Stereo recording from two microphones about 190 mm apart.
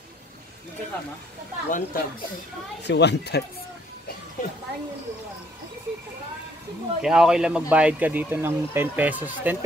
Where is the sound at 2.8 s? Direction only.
65° left (ahead or behind).